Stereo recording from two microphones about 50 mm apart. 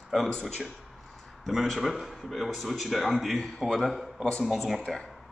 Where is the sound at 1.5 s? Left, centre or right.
Centre.